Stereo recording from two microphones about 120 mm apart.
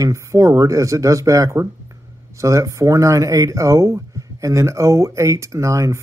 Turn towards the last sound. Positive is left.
turn(degrees=-25)  # may be behind; listen again after turning